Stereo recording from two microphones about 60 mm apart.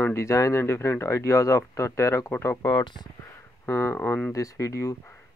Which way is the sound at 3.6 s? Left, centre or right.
Left.